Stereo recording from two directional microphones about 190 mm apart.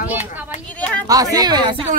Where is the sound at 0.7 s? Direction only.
5° left (ahead or behind).